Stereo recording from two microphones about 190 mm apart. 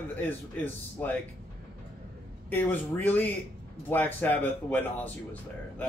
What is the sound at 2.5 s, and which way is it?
Speech, 10° left (ahead or behind).